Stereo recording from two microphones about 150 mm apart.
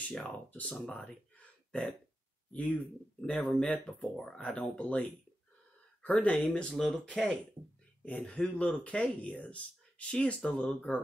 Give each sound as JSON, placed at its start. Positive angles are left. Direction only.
{"t": 0.0, "sound": "speech", "side_deg": 5}
{"t": 6.0, "sound": "speech", "side_deg": 10}